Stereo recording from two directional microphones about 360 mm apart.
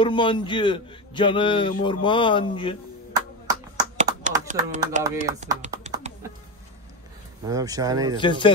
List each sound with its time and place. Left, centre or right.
0.0 s a man's voice: centre
3.7 s a sound: centre
7.4 s speech: centre
8.2 s a man's voice: centre